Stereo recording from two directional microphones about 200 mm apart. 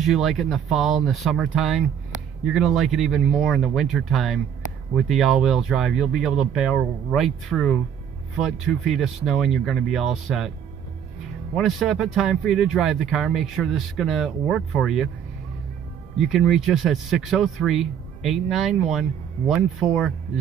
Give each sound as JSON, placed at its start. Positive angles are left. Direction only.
{"t": 0.0, "sound": "speech", "side_deg": 0}
{"t": 11.5, "sound": "speech", "side_deg": 0}
{"t": 16.2, "sound": "speech", "side_deg": 0}